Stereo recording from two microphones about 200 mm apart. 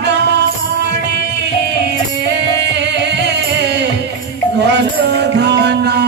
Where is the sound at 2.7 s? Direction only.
60° right (ahead or behind).